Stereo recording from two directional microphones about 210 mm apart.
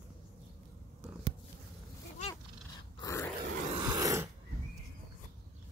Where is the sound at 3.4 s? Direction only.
45° right (ahead or behind).